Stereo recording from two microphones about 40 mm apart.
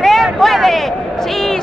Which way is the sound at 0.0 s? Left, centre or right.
Centre.